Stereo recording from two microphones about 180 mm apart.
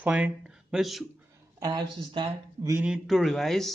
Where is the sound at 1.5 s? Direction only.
20° right (ahead or behind).